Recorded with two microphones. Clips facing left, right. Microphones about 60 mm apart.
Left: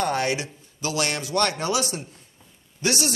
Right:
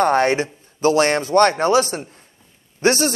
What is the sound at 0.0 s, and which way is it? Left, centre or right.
Speech, right.